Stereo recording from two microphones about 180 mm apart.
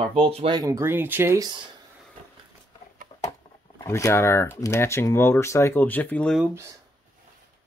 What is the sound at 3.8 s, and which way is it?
Speech, 15° left (ahead or behind).